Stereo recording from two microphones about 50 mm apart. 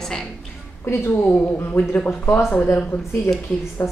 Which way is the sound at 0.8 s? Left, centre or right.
Left.